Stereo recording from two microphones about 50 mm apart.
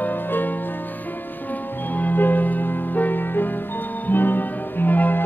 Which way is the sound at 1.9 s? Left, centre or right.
Left.